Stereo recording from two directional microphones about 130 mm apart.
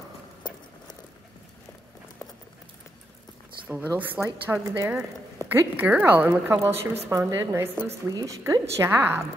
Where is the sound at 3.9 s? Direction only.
15° right (ahead or behind).